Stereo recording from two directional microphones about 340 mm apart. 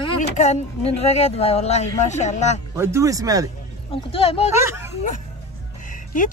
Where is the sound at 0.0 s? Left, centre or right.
Centre.